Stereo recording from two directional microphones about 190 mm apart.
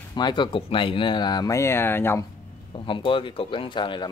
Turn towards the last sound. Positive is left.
turn(degrees=25)  # may be behind; listen again after turning